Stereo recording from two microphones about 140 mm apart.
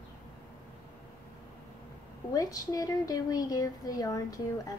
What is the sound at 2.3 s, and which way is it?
Speech, 25° left (ahead or behind).